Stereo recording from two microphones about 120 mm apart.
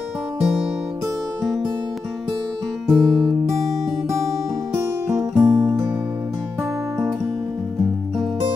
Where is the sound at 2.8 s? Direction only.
Centre (ahead or behind).